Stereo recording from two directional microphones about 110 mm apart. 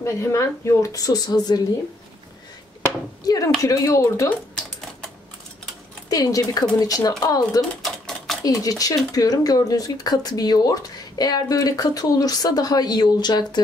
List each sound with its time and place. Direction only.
0.0 s speech: 25° left (ahead or behind)
3.3 s speech: 30° left (ahead or behind)
6.0 s speech: 35° left (ahead or behind)